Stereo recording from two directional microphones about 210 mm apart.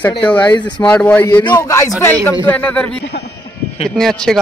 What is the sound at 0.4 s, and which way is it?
Speech, 20° left (ahead or behind).